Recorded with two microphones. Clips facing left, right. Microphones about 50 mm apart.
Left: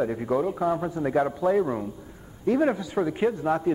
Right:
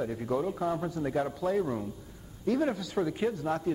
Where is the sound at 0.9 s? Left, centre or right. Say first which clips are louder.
Left 6 dB; left.